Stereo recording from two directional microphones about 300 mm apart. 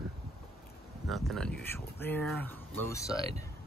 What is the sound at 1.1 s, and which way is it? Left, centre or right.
Speech, centre.